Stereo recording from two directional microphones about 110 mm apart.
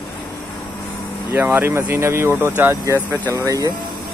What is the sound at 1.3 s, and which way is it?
Speech, 20° right (ahead or behind).